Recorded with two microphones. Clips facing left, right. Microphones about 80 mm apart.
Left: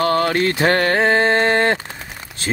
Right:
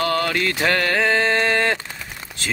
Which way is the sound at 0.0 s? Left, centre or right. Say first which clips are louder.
Left 4 dB; left.